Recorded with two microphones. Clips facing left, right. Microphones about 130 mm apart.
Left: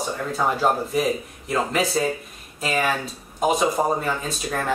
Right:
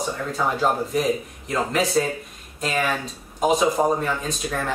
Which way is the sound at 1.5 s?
5° left (ahead or behind).